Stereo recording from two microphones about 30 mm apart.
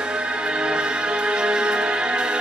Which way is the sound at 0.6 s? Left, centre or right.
Right.